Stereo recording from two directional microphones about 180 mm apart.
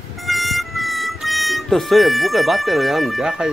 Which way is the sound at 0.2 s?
Centre (ahead or behind).